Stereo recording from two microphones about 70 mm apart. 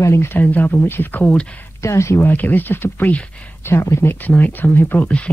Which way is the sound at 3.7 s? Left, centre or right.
Left.